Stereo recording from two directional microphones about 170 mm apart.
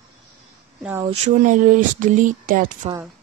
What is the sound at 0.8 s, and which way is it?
Speech, 10° right (ahead or behind).